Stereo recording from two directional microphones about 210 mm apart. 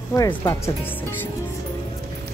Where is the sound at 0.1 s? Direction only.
15° left (ahead or behind).